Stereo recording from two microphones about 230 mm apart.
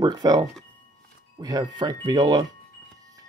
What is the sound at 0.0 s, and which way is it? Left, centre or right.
Speech, centre.